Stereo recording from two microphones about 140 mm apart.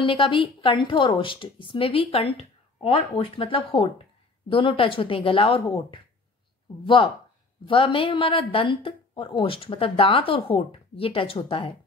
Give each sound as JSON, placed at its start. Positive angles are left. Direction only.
{"t": 0.0, "sound": "speech", "side_deg": 40}
{"t": 7.6, "sound": "speech", "side_deg": 40}